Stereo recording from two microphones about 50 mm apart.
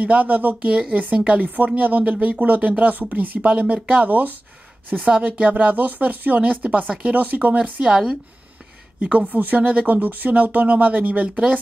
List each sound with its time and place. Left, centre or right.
0.0 s speech: right
7.9 s speech: centre
9.0 s speech: right